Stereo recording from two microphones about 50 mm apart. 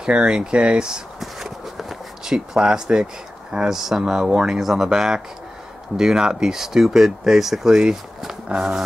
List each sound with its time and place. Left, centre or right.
0.0 s speech: centre
1.2 s walk: centre
3.5 s speech: centre